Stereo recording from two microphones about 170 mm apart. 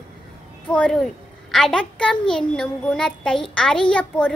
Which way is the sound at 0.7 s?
5° left (ahead or behind).